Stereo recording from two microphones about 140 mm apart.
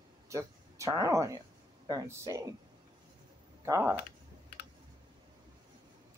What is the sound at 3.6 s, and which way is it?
Speech, 20° right (ahead or behind).